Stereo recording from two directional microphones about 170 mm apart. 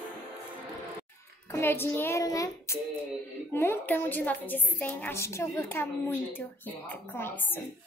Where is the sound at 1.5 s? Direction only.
15° left (ahead or behind).